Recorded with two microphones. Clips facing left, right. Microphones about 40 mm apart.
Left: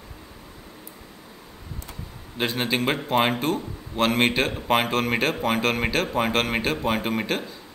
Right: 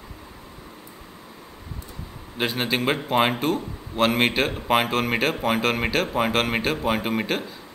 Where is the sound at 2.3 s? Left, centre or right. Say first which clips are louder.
Even; centre.